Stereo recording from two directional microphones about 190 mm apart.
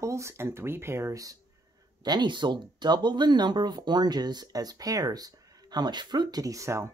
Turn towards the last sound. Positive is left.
turn(degrees=-15)  # may be behind; listen again after turning